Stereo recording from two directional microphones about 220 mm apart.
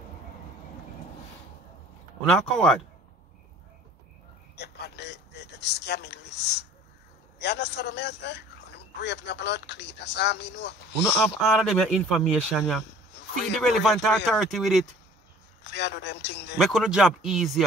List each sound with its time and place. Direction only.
2.2 s speech: centre (ahead or behind)
4.6 s a man's voice: 50° left (ahead or behind)
11.5 s speech: 5° left (ahead or behind)
15.6 s a man's voice: 50° left (ahead or behind)
16.5 s speech: centre (ahead or behind)